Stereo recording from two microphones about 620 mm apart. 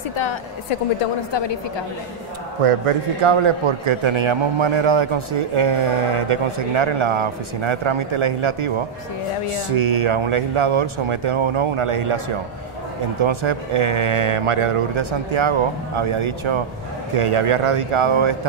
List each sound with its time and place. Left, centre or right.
0.1 s a woman's voice: left
2.6 s a man's voice: right
13.2 s a man's voice: right